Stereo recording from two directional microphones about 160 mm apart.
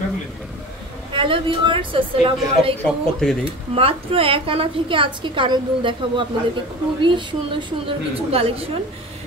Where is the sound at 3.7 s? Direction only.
35° right (ahead or behind).